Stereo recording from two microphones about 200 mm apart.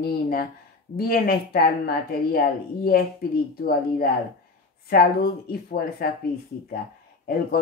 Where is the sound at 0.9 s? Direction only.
50° left (ahead or behind).